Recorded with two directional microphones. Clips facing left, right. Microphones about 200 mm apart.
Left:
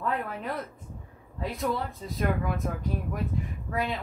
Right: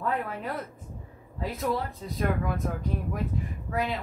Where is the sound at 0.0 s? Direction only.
Centre (ahead or behind).